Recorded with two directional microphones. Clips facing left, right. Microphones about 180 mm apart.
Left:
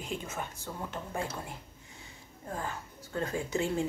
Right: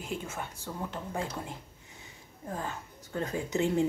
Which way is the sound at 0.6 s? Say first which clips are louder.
Right 1 dB; 15° right (ahead or behind).